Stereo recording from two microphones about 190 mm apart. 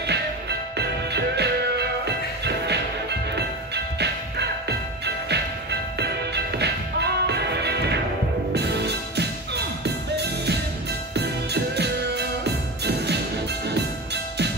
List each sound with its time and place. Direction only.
0.0 s music: 60° right (ahead or behind)